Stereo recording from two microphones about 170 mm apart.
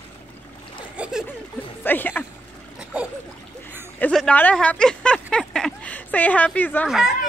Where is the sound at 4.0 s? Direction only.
5° left (ahead or behind).